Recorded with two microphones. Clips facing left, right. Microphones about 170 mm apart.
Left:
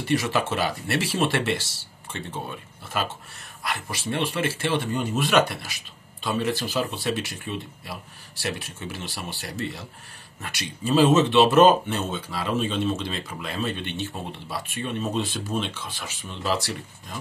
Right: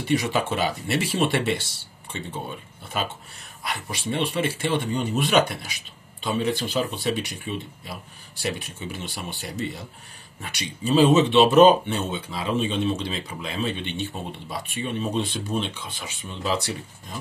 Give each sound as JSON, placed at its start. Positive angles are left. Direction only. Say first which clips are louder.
{"t": 0.0, "sound": "speech", "louder": "right 1 dB", "side_deg": 0}
{"t": 2.9, "sound": "speech", "louder": "even", "side_deg": 0}